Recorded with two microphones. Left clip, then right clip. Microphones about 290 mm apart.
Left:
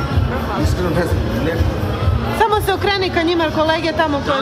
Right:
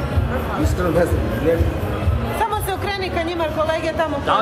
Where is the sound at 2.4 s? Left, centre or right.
Left.